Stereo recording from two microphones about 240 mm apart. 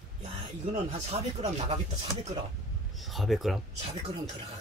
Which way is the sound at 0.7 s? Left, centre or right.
Right.